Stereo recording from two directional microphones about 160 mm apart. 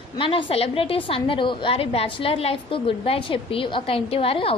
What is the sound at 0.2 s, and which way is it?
A woman's voice, 35° left (ahead or behind).